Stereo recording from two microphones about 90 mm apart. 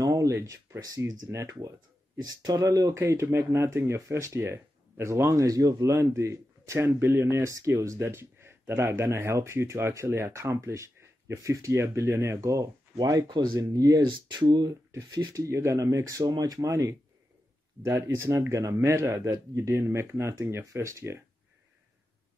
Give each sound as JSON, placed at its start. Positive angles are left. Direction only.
{"t": 0.0, "sound": "speech", "side_deg": -40}
{"t": 3.0, "sound": "speech", "side_deg": -30}
{"t": 12.9, "sound": "speech", "side_deg": -45}
{"t": 14.4, "sound": "speech", "side_deg": -55}
{"t": 15.4, "sound": "speech", "side_deg": -30}